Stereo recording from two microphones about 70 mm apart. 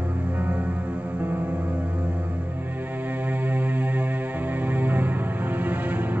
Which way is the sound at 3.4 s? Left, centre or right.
Right.